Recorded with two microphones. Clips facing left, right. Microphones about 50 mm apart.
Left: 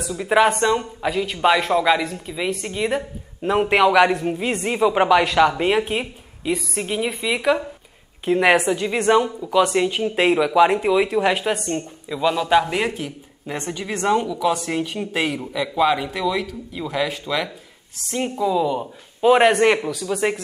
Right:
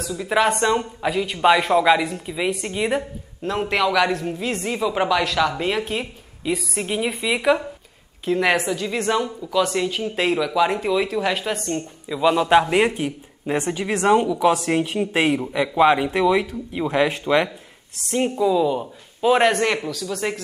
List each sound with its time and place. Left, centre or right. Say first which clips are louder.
0.0 s a woman's voice: left 3 dB; centre
0.6 s speech: even; centre
3.4 s a woman's voice: left 5 dB; centre
6.4 s speech: left 1 dB; centre
8.3 s a woman's voice: left 3 dB; centre
12.2 s a man's voice: right 2 dB; centre
18.1 s a woman's voice: right 2 dB; centre